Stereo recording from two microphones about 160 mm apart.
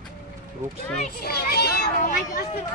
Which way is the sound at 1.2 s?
80° left.